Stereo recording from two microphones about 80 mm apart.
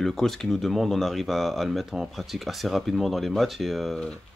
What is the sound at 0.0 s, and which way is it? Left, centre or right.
Speech, centre.